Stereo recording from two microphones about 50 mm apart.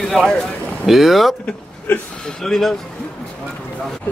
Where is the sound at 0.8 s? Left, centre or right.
Centre.